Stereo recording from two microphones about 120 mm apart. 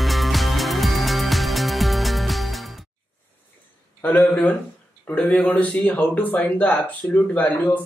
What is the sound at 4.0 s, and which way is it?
Speech, 15° left (ahead or behind).